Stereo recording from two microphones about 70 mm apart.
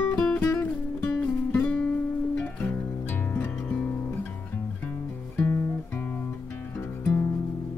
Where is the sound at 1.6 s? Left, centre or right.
Centre.